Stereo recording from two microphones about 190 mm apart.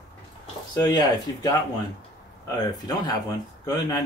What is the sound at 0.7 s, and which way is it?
Speech, 20° left (ahead or behind).